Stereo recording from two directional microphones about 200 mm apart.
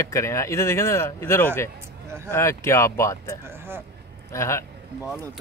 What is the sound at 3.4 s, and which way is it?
Speech, 10° right (ahead or behind).